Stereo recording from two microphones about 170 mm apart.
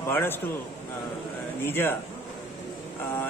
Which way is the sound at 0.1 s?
15° left (ahead or behind).